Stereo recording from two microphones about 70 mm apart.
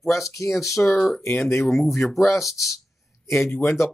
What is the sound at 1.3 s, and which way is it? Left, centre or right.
Speech, left.